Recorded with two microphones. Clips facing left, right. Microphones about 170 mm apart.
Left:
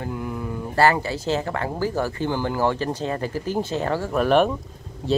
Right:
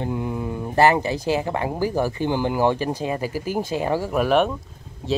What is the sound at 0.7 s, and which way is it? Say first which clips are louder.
Speech: right 2 dB; 20° right (ahead or behind).